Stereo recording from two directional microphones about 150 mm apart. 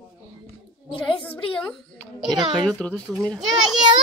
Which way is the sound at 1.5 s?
5° left (ahead or behind).